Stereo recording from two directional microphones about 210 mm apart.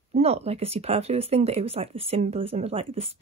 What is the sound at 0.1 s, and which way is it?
Speech, 30° right (ahead or behind).